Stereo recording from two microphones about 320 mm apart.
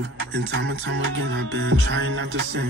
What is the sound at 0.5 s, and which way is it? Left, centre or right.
Music, right.